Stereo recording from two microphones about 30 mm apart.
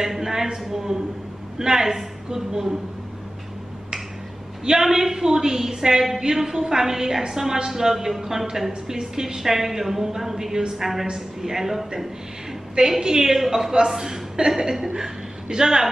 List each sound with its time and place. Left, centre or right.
0.0 s a woman's voice: centre
4.6 s a woman's voice: centre
13.0 s a woman's voice: centre